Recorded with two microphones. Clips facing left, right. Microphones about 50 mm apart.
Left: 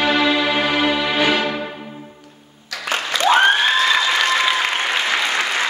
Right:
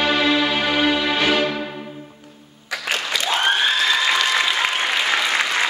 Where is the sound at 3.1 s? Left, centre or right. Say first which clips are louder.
Left 9 dB; left.